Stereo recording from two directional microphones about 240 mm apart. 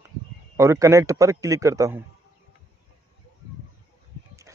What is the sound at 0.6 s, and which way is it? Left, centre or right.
A man's voice, centre.